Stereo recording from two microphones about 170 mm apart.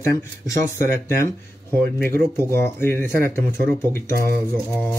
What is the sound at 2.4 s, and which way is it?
Speech, 15° left (ahead or behind).